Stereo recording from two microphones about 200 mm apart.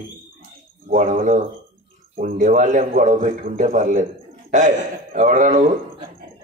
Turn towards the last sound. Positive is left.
turn(degrees=-40)  # may be behind; listen again after turning